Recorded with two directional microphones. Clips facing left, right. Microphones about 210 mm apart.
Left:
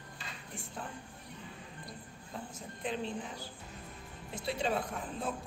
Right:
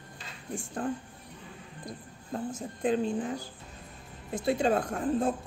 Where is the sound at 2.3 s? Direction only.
50° right (ahead or behind).